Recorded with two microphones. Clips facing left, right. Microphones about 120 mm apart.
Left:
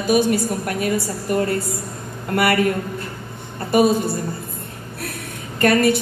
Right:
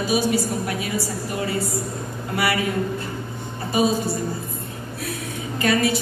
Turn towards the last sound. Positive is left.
turn(degrees=55)  # may be behind; listen again after turning